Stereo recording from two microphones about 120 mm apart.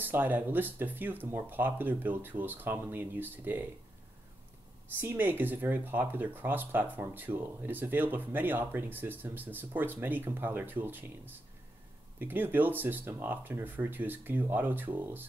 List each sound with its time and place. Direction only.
0.0 s speech: 15° right (ahead or behind)
5.0 s speech: 15° right (ahead or behind)
12.2 s speech: 15° right (ahead or behind)